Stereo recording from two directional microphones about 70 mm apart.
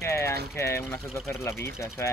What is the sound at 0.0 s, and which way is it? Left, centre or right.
Speech, left.